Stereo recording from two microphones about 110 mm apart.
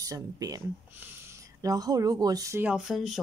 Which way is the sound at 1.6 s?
35° right (ahead or behind).